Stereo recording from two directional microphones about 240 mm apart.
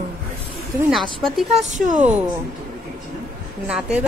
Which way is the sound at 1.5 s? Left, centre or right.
Right.